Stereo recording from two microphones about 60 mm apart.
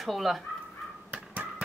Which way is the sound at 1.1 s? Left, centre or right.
Right.